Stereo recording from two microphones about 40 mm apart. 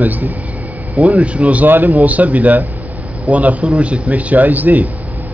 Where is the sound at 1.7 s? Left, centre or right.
Right.